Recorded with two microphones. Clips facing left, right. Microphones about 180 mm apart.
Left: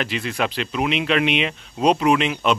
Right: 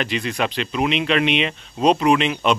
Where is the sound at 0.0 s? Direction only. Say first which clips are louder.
Right 1 dB; 5° left (ahead or behind).